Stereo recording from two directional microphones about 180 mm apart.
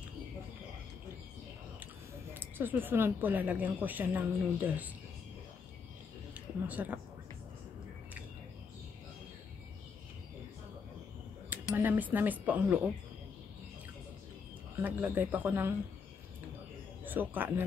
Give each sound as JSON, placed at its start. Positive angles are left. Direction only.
{"t": 2.3, "sound": "speech", "side_deg": -10}
{"t": 6.3, "sound": "a sound", "side_deg": -10}
{"t": 11.7, "sound": "speech", "side_deg": -10}
{"t": 14.8, "sound": "speech", "side_deg": -10}
{"t": 17.0, "sound": "speech", "side_deg": -10}